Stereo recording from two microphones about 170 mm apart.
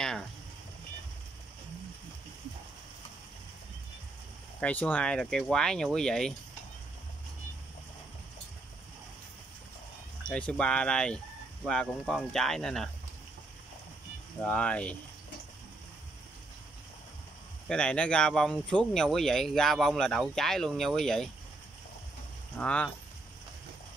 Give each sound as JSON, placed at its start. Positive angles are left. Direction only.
{"t": 4.6, "sound": "speech", "side_deg": 10}
{"t": 10.2, "sound": "speech", "side_deg": 5}
{"t": 14.4, "sound": "speech", "side_deg": 5}
{"t": 17.6, "sound": "speech", "side_deg": 5}
{"t": 22.6, "sound": "speech", "side_deg": 5}